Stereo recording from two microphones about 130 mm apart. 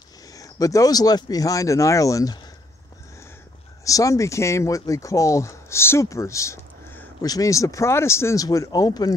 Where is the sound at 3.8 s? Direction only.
25° left (ahead or behind).